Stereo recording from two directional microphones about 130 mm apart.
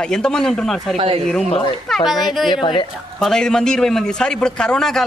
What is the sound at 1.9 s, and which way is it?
Speech, centre (ahead or behind).